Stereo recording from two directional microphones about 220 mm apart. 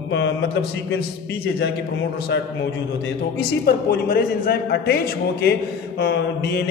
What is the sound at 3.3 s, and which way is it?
A woman's voice, 45° left (ahead or behind).